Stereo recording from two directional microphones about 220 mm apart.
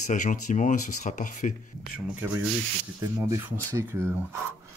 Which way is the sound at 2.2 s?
5° right (ahead or behind).